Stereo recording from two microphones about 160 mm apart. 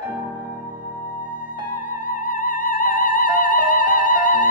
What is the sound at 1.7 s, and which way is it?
Music, 55° left (ahead or behind).